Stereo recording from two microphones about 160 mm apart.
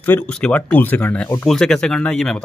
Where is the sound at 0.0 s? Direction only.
10° left (ahead or behind).